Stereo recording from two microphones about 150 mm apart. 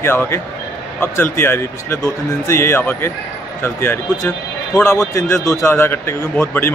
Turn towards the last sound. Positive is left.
turn(degrees=15)  # may be behind; listen again after turning